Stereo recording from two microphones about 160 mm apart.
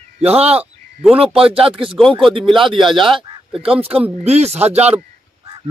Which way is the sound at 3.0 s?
30° right (ahead or behind).